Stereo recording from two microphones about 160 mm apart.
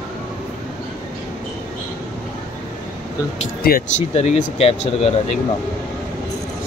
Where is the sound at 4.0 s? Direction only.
40° left (ahead or behind).